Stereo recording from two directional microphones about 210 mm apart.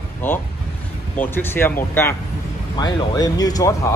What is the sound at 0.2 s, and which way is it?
A man's voice, 10° left (ahead or behind).